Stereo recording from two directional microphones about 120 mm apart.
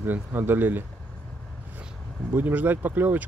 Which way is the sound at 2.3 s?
15° right (ahead or behind).